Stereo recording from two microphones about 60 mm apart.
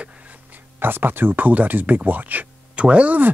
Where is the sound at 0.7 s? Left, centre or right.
Right.